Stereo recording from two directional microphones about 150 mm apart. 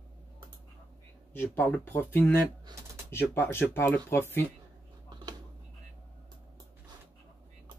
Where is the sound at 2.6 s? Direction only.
20° right (ahead or behind).